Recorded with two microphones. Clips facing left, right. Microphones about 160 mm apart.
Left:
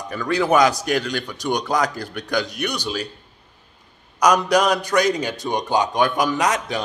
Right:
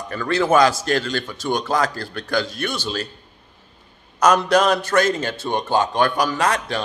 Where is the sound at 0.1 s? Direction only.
10° left (ahead or behind).